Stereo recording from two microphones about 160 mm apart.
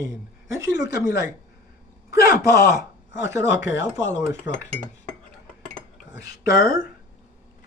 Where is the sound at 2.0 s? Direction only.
75° left (ahead or behind).